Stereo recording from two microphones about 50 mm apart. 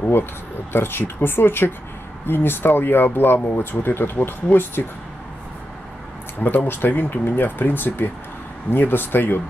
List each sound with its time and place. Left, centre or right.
0.7 s speech: left
6.4 s speech: left